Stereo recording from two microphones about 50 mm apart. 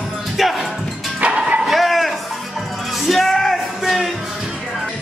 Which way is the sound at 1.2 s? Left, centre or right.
Right.